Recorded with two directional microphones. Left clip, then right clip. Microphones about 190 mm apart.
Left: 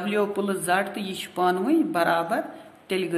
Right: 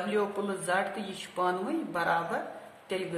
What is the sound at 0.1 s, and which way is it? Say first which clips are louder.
Speech: left 7 dB; 40° left (ahead or behind).